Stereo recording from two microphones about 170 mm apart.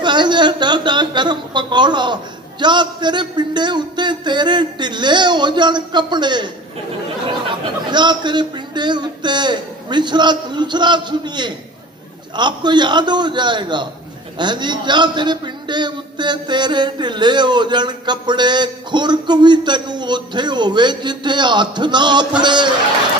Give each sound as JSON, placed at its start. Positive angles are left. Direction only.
{"t": 0.0, "sound": "a man's voice", "side_deg": -25}